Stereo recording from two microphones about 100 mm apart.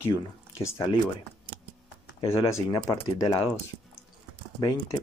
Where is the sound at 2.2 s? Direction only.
75° left (ahead or behind).